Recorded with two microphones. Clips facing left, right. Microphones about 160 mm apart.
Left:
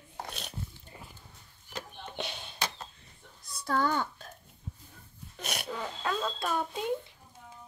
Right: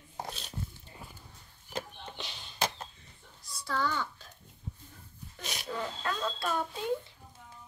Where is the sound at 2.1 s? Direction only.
60° left (ahead or behind).